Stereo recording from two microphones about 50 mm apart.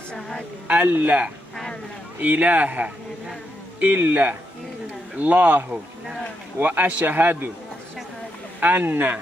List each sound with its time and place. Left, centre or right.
0.7 s speech: right
8.5 s speech: right